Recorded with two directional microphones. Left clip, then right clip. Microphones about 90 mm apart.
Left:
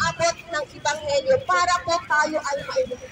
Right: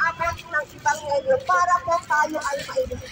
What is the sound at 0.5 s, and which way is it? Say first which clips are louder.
Speech: right 2 dB; 30° left (ahead or behind).